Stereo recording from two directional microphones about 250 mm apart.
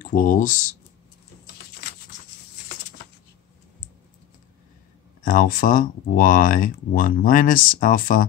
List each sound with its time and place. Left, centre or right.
0.1 s speech: left
5.2 s speech: left